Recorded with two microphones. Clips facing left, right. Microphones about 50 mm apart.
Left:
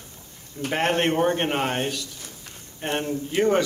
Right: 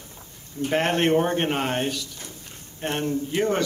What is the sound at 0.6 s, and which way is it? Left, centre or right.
Speech, left.